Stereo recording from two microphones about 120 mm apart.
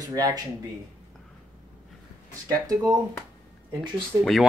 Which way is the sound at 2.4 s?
30° right (ahead or behind).